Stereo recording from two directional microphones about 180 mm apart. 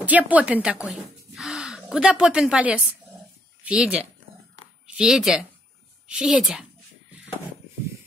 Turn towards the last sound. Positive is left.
turn(degrees=0)  # may be behind; listen again after turning